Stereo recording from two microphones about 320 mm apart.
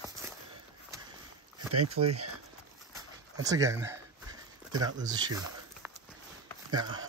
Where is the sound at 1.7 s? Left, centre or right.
Right.